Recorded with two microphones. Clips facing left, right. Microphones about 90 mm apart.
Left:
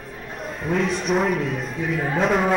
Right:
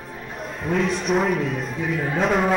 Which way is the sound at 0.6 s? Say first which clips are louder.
Even; centre (ahead or behind).